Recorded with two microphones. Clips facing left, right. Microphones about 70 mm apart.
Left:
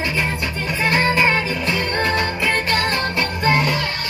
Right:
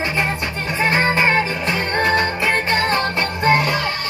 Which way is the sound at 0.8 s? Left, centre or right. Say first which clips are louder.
Even; right.